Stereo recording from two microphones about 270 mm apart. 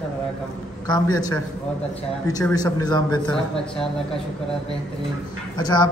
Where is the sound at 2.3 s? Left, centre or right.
Centre.